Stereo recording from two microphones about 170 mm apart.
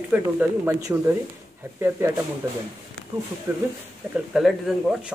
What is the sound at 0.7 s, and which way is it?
Speech, 20° right (ahead or behind).